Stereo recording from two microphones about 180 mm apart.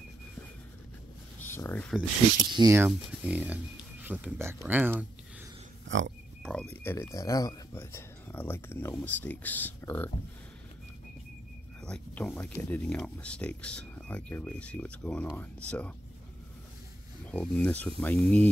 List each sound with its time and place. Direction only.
1.4 s speech: 10° left (ahead or behind)
2.5 s speech: 20° right (ahead or behind)
5.9 s pig: 90° right
6.5 s speech: 10° left (ahead or behind)
11.8 s speech: 5° left (ahead or behind)
17.3 s speech: 10° left (ahead or behind)